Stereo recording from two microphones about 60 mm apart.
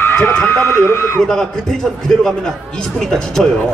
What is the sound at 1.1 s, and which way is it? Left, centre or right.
A man's voice, centre.